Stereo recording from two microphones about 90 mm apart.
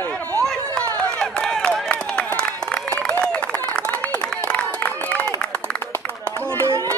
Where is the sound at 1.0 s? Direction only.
10° left (ahead or behind).